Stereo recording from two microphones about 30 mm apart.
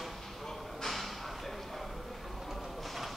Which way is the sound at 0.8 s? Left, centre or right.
Centre.